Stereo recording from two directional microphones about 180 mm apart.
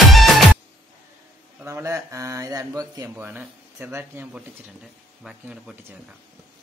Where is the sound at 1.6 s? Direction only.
15° right (ahead or behind).